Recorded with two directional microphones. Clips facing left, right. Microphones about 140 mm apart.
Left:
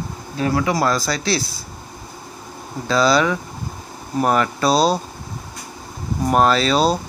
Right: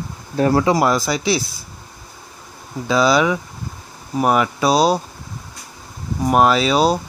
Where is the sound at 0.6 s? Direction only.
20° right (ahead or behind).